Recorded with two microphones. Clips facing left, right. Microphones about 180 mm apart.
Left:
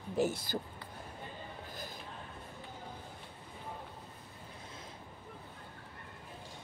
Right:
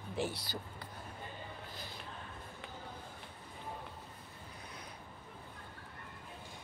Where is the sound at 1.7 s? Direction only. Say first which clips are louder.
Left 3 dB; 45° left (ahead or behind).